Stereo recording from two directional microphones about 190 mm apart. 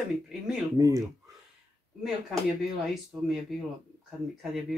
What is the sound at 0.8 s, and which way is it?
Speech, 20° right (ahead or behind).